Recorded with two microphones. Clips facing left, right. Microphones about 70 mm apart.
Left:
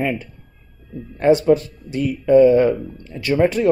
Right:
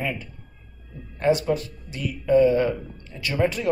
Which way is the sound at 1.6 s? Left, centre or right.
Left.